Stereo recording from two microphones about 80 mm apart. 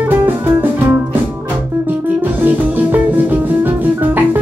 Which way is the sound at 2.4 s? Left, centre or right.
Right.